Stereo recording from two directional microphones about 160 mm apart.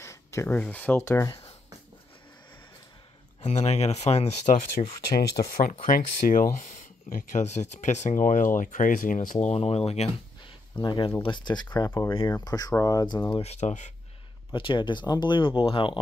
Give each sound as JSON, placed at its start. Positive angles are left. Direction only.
{"t": 0.0, "sound": "a sound", "side_deg": 20}
{"t": 0.6, "sound": "speech", "side_deg": 10}
{"t": 3.4, "sound": "speech", "side_deg": 45}
{"t": 4.6, "sound": "speech", "side_deg": 65}
{"t": 10.8, "sound": "speech", "side_deg": 30}
{"t": 13.3, "sound": "speech", "side_deg": 40}
{"t": 14.5, "sound": "speech", "side_deg": 30}